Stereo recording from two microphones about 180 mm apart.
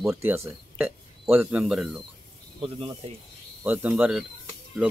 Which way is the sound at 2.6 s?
30° right (ahead or behind).